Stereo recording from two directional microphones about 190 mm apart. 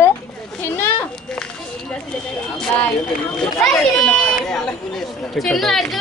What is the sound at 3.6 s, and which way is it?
Speech, 5° left (ahead or behind).